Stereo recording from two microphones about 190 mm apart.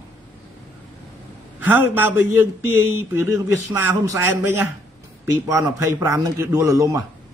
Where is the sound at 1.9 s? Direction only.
10° right (ahead or behind).